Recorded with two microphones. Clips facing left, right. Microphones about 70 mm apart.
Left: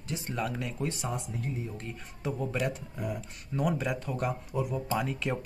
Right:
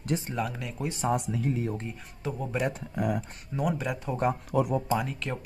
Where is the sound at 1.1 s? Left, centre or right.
Right.